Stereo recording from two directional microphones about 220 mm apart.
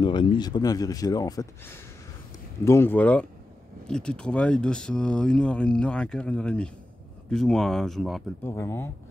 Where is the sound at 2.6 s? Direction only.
10° left (ahead or behind).